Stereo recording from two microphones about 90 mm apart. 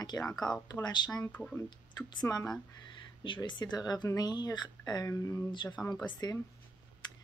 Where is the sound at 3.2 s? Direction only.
60° left (ahead or behind); by 5.4 s 40° left (ahead or behind).